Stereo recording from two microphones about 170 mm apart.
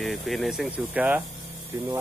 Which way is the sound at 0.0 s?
Centre (ahead or behind).